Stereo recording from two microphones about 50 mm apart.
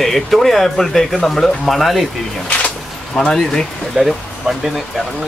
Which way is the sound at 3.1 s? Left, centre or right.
Centre.